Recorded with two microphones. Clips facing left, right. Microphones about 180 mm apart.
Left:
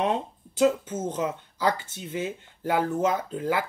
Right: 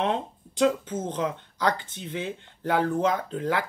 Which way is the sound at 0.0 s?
10° left (ahead or behind).